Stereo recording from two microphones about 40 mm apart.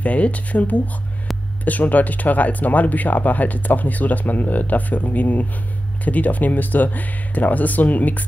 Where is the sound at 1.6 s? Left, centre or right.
Left.